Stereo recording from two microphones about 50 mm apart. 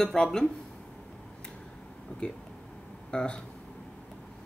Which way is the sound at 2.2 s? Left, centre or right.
Left.